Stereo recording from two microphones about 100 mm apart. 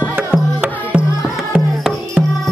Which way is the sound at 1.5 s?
Centre (ahead or behind).